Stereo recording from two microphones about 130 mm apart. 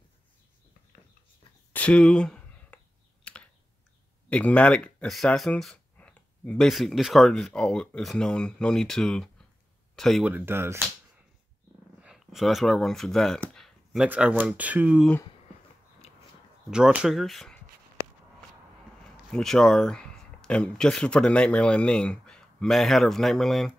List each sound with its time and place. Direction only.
1.7 s a sound: 10° left (ahead or behind)
3.3 s typing: 10° left (ahead or behind)
4.3 s speech: 10° left (ahead or behind)
10.2 s speech: 15° right (ahead or behind)
12.0 s a sound: 5° right (ahead or behind)
14.0 s speech: 10° right (ahead or behind)
16.7 s speech: 5° right (ahead or behind)
19.3 s speech: 5° left (ahead or behind)